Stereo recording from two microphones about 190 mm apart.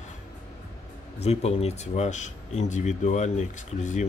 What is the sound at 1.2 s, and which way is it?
Speech, 35° left (ahead or behind).